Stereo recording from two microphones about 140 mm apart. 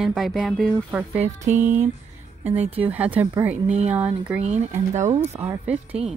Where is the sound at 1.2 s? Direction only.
60° right (ahead or behind).